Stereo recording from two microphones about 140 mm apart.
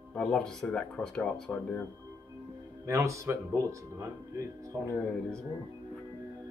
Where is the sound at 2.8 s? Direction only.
20° right (ahead or behind).